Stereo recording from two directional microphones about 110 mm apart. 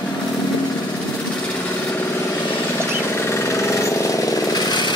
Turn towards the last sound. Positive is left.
turn(degrees=40)  # may be behind; listen again after turning